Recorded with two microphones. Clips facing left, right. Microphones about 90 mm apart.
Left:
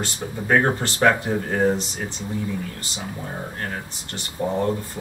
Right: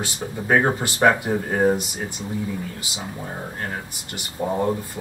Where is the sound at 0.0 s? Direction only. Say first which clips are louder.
Even; 5° right (ahead or behind).